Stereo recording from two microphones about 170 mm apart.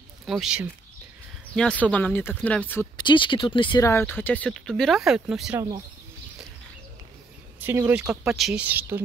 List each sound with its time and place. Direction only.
0.3 s speech: 5° right (ahead or behind)
3.0 s speech: 30° left (ahead or behind)
3.8 s speech: 15° left (ahead or behind); by 5.6 s 5° right (ahead or behind)
7.6 s speech: 15° right (ahead or behind)
8.1 s speech: 5° right (ahead or behind)